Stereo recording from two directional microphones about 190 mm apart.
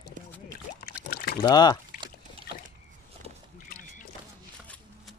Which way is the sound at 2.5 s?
55° left (ahead or behind).